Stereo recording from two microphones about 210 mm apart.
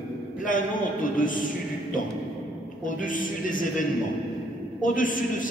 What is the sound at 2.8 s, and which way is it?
A man's voice, 40° left (ahead or behind).